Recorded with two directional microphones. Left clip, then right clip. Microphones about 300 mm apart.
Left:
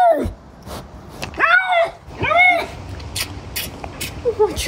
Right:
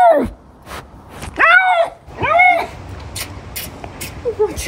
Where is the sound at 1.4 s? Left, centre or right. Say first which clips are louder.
Right 4 dB; right.